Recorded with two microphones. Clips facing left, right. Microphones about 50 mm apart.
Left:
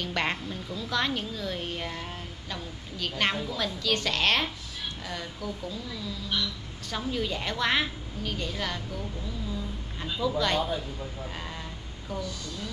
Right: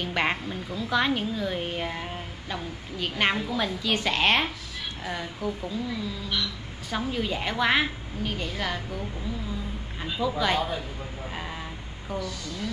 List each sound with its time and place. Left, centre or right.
0.0 s a woman's voice: centre
9.5 s a sound: centre
11.3 s vehicle: centre